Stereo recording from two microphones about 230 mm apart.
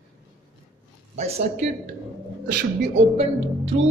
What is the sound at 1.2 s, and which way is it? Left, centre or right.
Speech, right.